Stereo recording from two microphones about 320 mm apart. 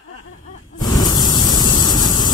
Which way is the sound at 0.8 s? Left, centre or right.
Centre.